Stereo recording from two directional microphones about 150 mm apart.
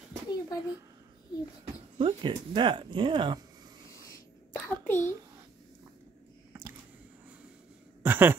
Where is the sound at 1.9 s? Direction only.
30° right (ahead or behind).